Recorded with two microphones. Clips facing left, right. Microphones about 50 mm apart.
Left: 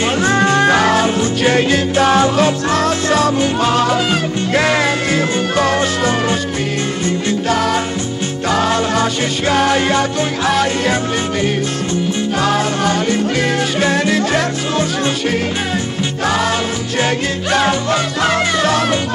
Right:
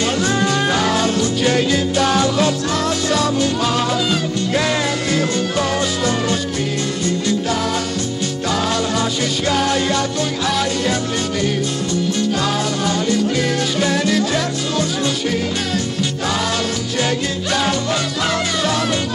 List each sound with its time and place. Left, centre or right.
0.0 s music: left
0.6 s music: left
2.7 s music: left
7.4 s music: left
12.4 s music: left
16.3 s music: left